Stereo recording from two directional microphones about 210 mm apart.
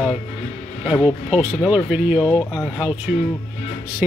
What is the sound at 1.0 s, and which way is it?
Speech, 25° left (ahead or behind).